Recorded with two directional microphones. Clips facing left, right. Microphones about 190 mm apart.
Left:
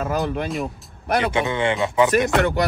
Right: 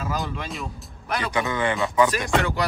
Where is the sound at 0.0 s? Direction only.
55° left (ahead or behind).